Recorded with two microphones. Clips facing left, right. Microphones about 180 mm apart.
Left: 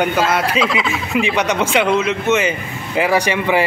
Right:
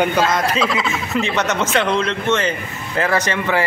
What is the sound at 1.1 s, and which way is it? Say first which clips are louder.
A man's voice: left 3 dB; 10° left (ahead or behind).